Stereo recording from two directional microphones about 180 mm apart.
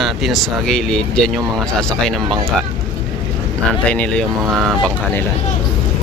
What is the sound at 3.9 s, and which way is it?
Speech, 5° left (ahead or behind).